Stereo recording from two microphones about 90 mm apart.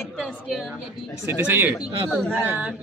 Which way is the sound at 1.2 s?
25° right (ahead or behind).